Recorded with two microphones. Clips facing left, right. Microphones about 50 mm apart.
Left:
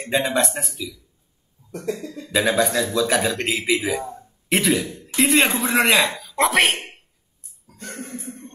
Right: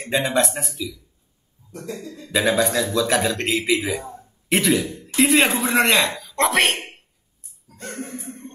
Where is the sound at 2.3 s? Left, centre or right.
Centre.